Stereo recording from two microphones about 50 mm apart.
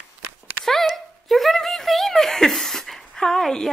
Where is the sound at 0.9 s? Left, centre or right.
Centre.